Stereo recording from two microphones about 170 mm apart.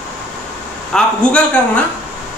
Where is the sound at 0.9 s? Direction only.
5° left (ahead or behind).